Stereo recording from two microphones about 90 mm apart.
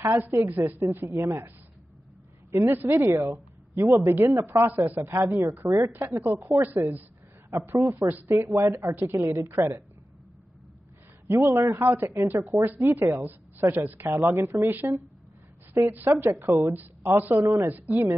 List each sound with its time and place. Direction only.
0.2 s a woman's voice: 25° right (ahead or behind)
2.5 s a woman's voice: 25° right (ahead or behind)
11.2 s a woman's voice: 25° right (ahead or behind)